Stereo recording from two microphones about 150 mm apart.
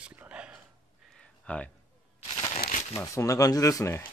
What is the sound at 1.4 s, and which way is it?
Speech, 10° left (ahead or behind).